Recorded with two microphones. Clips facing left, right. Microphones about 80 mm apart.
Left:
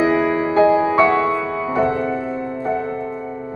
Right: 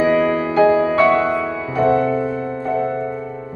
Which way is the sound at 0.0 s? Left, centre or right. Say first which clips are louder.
Right 1 dB; centre.